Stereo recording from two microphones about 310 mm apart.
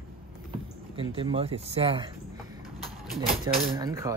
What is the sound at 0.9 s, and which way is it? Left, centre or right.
Speech, centre.